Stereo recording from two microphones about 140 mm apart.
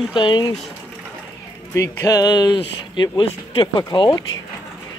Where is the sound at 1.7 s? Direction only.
20° left (ahead or behind).